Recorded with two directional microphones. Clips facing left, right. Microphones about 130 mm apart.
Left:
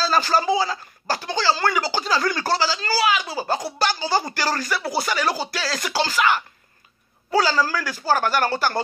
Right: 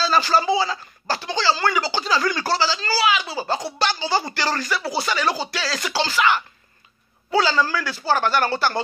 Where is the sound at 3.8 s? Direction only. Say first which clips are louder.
Even; 45° left (ahead or behind).